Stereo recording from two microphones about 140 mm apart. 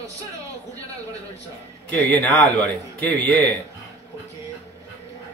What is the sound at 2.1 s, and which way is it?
Speech, 10° left (ahead or behind).